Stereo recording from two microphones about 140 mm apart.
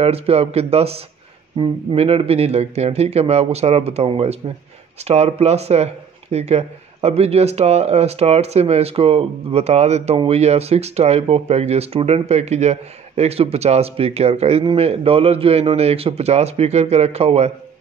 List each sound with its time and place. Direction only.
0.0 s speech: 45° right (ahead or behind)